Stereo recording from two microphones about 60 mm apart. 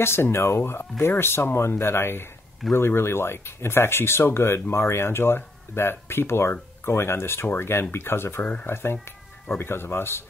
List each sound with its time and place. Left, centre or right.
0.0 s speech: left
8.4 s speech: left
8.6 s speech: left